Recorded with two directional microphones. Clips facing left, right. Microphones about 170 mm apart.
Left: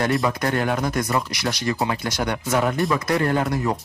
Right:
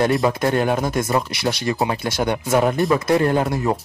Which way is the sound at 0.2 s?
20° right (ahead or behind).